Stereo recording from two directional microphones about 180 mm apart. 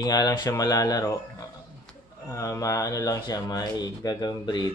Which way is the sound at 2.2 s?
15° left (ahead or behind).